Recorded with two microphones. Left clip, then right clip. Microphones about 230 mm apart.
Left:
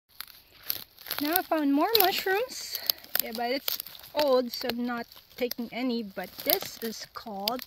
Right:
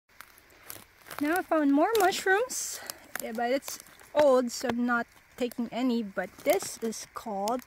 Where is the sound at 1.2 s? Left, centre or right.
Centre.